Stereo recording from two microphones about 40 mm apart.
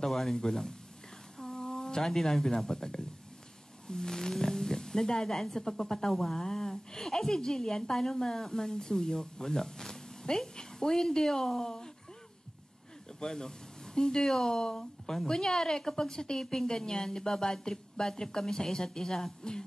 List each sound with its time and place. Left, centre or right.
0.0 s speech: centre
13.2 s speech: centre